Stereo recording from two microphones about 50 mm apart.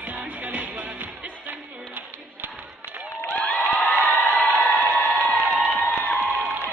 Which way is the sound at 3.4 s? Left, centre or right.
Left.